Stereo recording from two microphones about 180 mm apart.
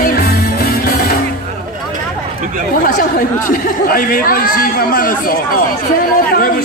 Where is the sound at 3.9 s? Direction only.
55° left (ahead or behind).